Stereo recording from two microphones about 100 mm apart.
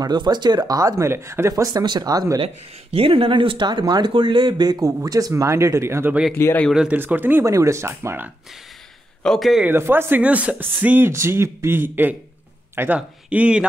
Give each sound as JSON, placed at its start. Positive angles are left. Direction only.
{"t": 0.0, "sound": "speech", "side_deg": -45}
{"t": 2.4, "sound": "speech", "side_deg": -70}
{"t": 6.3, "sound": "speech", "side_deg": 25}
{"t": 6.7, "sound": "speech", "side_deg": -5}
{"t": 7.0, "sound": "speech", "side_deg": -20}
{"t": 7.4, "sound": "speech", "side_deg": -30}
{"t": 9.2, "sound": "speech", "side_deg": 5}
{"t": 9.7, "sound": "speech", "side_deg": -25}